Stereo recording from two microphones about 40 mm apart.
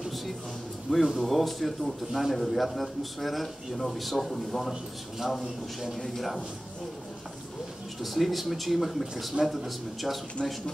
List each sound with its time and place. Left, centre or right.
0.8 s a man's voice: centre
8.0 s a man's voice: centre
10.4 s speech: left